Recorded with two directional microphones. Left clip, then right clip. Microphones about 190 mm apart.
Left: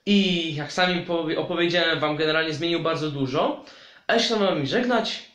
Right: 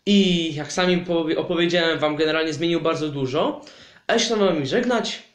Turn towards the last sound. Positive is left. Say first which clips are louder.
# right 1 dB
turn(degrees=-45)  # may be behind; listen again after turning